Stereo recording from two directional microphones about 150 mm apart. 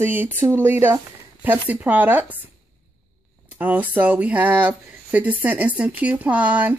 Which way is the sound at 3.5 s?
10° right (ahead or behind).